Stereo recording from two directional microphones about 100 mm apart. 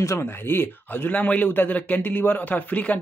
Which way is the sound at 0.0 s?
25° left (ahead or behind).